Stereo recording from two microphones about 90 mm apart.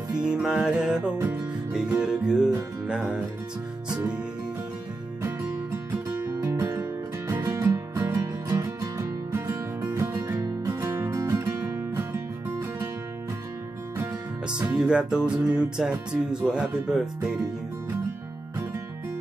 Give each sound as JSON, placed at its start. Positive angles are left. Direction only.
{"t": 0.1, "sound": "music", "side_deg": -10}
{"t": 6.1, "sound": "music", "side_deg": -30}
{"t": 14.5, "sound": "music", "side_deg": -10}